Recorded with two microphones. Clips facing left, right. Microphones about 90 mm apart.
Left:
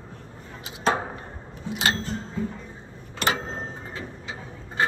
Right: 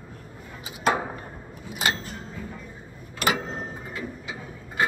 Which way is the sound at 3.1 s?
30° left (ahead or behind).